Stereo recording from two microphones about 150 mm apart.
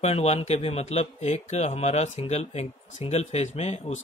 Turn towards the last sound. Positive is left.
turn(degrees=45)  # may be behind; listen again after turning